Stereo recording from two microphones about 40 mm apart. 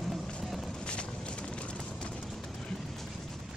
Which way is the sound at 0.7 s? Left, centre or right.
Left.